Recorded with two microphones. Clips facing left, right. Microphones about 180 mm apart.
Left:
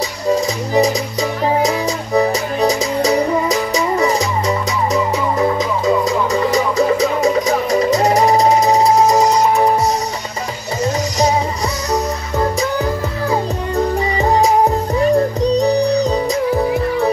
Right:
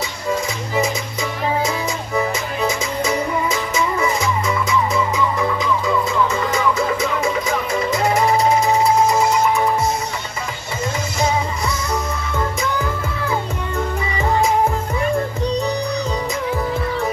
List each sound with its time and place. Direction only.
0.3 s music: 35° left (ahead or behind)
2.1 s music: 40° left (ahead or behind)
11.9 s music: 40° left (ahead or behind)